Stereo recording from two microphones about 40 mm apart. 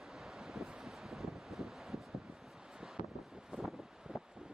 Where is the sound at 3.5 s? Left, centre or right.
Right.